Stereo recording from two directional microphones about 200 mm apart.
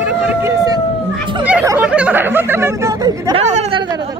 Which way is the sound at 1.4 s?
10° right (ahead or behind).